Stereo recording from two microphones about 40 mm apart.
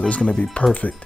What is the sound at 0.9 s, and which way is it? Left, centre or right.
Speech, left.